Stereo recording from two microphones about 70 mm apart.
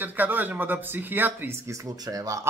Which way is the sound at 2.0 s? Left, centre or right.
Right.